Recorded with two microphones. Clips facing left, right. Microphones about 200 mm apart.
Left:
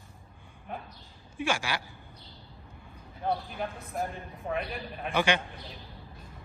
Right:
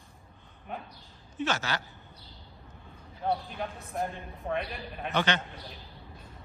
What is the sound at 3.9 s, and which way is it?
A man's voice, 5° left (ahead or behind).